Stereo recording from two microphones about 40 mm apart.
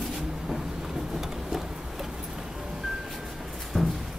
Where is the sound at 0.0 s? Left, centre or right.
Centre.